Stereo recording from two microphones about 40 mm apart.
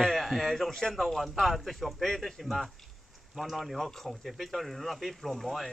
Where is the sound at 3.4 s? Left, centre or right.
Centre.